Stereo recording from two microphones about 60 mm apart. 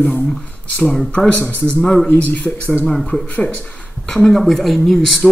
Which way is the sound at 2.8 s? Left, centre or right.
Centre.